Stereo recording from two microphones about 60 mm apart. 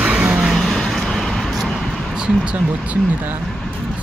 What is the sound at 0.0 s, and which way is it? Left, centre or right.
Music, centre.